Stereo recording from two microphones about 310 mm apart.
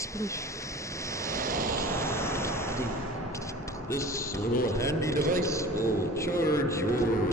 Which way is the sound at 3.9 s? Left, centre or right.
Centre.